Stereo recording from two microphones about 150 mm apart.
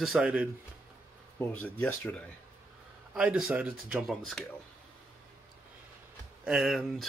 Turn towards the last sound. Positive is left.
turn(degrees=0)  # may be behind; listen again after turning